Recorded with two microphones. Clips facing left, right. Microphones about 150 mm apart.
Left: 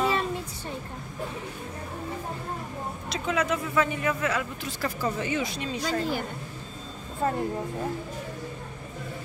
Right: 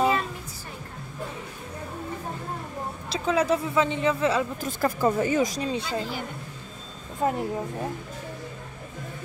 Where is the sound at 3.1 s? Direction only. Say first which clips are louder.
Right 4 dB; 30° right (ahead or behind).